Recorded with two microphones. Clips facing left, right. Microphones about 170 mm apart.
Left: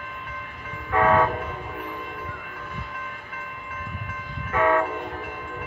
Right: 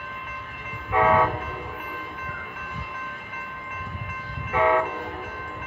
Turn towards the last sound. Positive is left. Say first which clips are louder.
# even
turn(degrees=-15)  # may be behind; listen again after turning